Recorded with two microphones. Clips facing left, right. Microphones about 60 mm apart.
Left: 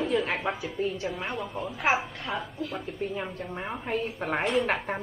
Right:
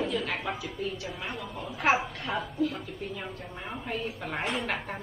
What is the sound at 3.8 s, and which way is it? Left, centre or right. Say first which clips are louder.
Speech: left 4 dB; left.